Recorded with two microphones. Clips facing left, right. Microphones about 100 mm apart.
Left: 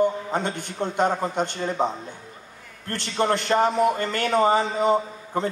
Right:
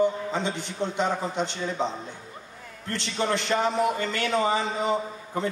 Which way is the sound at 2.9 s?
50° left (ahead or behind).